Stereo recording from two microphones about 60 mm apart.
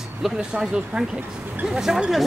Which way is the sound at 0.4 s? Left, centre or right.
Centre.